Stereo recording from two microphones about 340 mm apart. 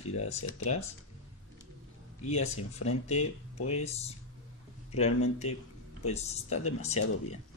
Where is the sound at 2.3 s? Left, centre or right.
Centre.